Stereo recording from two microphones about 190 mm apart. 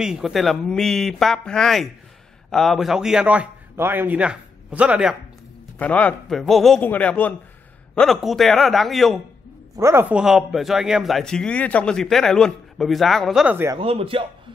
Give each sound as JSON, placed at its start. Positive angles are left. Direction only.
{"t": 0.0, "sound": "a man's voice", "side_deg": -5}
{"t": 5.8, "sound": "a man's voice", "side_deg": 5}
{"t": 9.8, "sound": "a man's voice", "side_deg": -15}
{"t": 13.7, "sound": "a man's voice", "side_deg": -30}